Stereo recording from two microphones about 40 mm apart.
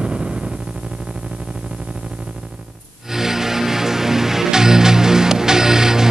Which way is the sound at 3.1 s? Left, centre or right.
Centre.